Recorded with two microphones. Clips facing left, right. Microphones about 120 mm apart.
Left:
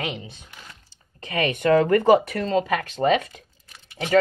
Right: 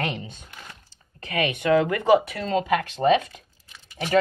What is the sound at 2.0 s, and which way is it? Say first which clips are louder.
Speech: left 2 dB; 30° left (ahead or behind).